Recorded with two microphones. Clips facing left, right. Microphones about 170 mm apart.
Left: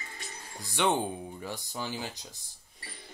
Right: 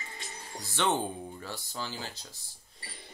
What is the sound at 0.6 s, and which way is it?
Speech, 15° left (ahead or behind).